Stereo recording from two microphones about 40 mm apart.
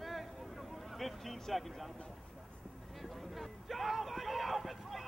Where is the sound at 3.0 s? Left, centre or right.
Centre.